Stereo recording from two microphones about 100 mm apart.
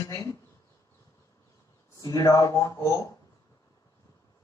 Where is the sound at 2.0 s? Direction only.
40° left (ahead or behind).